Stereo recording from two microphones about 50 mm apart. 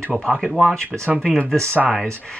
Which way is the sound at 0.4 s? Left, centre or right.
Centre.